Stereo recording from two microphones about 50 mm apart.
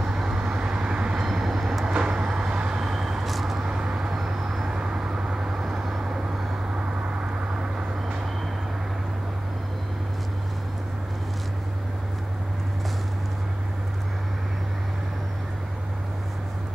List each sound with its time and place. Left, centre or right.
0.0 s vehicle: centre
1.2 s vehicle: centre
1.9 s vehicle: centre
3.6 s vehicle: centre
4.1 s vehicle: centre